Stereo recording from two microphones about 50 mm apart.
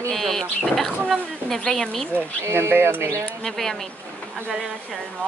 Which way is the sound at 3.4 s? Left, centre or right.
Centre.